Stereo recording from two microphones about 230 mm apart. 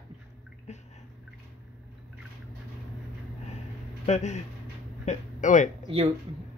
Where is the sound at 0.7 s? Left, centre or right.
Left.